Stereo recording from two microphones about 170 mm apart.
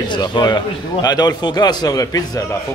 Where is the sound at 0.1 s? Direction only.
25° left (ahead or behind).